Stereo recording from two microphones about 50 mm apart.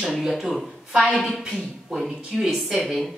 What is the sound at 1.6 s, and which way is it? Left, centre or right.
Speech, centre.